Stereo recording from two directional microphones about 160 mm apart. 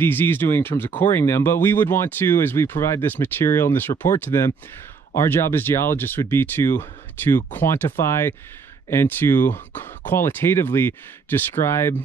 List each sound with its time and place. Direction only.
0.0 s speech: 10° left (ahead or behind)